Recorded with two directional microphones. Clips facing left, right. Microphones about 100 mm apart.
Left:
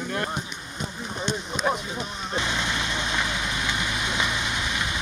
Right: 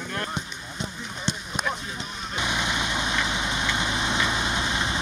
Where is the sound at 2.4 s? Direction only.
15° right (ahead or behind).